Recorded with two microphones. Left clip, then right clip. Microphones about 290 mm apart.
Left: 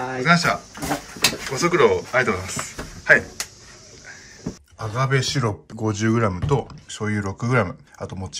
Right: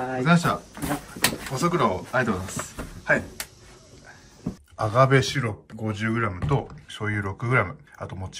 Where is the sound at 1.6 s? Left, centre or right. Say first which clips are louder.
Left 6 dB; right.